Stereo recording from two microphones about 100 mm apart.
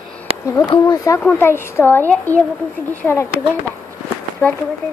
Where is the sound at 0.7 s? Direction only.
50° left (ahead or behind).